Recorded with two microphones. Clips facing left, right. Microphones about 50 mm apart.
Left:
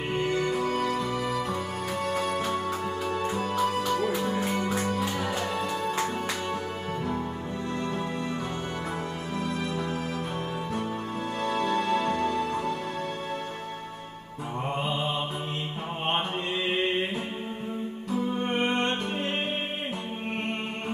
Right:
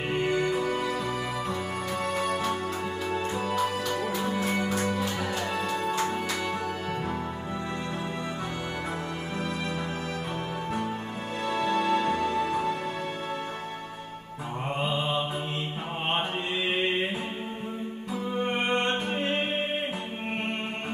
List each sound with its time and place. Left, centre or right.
0.1 s music: centre
3.1 s music: right
11.4 s music: right
18.7 s music: right